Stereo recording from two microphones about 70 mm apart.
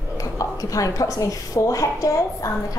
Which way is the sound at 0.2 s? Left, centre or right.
Left.